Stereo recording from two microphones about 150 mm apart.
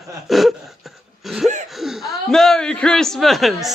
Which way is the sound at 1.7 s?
Centre (ahead or behind).